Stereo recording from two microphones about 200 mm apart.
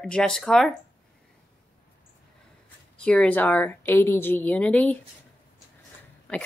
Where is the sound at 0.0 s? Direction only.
5° left (ahead or behind).